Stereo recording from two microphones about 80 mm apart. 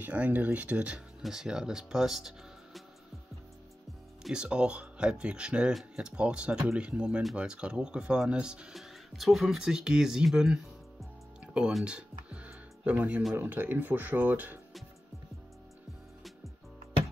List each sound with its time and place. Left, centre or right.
0.0 s speech: centre
4.2 s speech: centre